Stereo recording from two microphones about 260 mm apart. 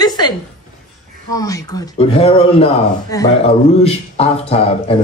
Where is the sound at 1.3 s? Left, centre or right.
Centre.